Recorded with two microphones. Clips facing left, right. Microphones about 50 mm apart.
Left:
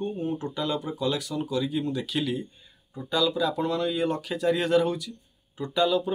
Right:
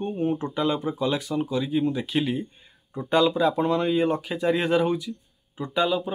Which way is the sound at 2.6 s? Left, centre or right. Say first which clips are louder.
Right 5 dB; right.